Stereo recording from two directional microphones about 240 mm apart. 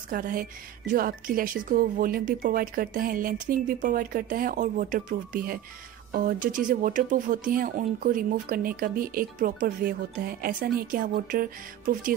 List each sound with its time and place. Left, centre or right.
0.1 s speech: right